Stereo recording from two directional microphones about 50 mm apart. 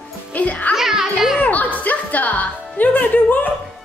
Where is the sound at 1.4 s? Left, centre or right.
Left.